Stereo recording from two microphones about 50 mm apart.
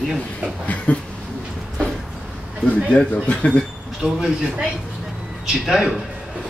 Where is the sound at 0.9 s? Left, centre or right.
Left.